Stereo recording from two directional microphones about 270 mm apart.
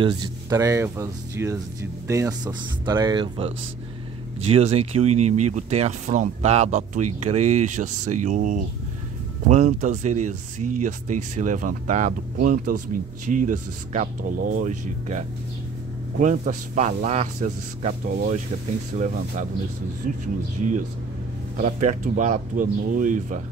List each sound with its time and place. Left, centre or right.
0.0 s speech: centre
21.5 s speech: right